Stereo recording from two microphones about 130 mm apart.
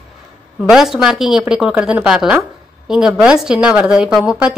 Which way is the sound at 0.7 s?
5° right (ahead or behind).